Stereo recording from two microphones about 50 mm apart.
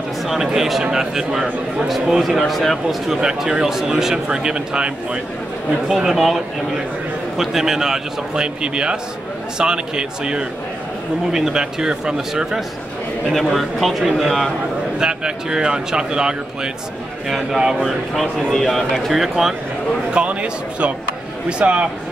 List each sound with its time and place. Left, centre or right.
0.6 s a man's voice: centre
3.1 s speech: centre
5.9 s speech: centre
13.3 s a man's voice: centre
15.0 s speech: centre
18.5 s a man's voice: centre
20.1 s a sound: right
21.5 s a man's voice: right